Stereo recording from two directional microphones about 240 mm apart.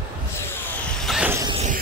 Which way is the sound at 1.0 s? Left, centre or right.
Centre.